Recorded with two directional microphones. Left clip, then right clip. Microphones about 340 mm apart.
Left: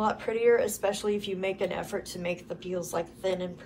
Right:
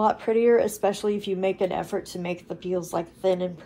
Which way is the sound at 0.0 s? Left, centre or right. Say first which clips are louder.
Right 5 dB; centre.